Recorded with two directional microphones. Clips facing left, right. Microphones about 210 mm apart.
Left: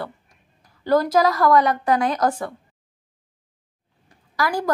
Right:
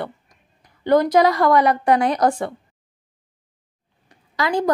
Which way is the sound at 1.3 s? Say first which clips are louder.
Right 1 dB; 25° right (ahead or behind).